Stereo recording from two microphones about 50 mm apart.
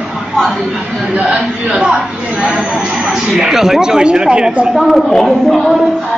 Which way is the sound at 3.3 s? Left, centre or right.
Centre.